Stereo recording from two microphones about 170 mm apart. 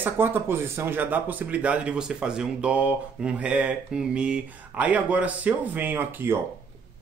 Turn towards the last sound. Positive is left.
turn(degrees=-10)  # may be behind; listen again after turning